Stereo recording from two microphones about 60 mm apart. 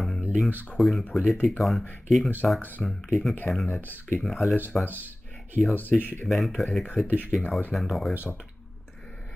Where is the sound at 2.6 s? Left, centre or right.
Left.